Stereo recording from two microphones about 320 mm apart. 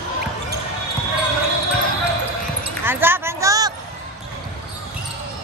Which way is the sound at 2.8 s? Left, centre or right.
Centre.